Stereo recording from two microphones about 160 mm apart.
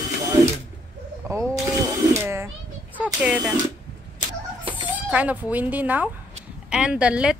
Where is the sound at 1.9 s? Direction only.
15° right (ahead or behind).